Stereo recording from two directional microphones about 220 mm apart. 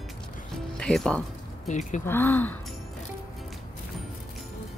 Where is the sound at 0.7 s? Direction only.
5° left (ahead or behind).